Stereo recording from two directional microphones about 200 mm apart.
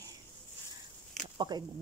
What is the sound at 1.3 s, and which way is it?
Speech, 20° right (ahead or behind).